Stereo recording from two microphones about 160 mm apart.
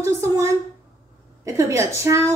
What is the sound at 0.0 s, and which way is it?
A woman's voice, 20° right (ahead or behind).